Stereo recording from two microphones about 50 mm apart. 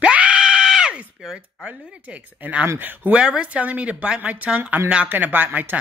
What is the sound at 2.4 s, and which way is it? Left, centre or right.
Speech, right.